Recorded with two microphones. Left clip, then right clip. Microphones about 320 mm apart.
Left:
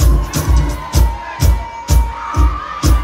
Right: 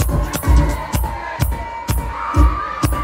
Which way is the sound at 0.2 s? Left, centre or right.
Right.